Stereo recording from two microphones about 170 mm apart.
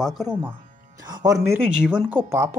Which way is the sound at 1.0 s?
20° right (ahead or behind).